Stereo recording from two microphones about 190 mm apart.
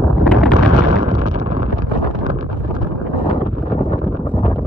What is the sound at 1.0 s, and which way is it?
Explosion, 40° right (ahead or behind).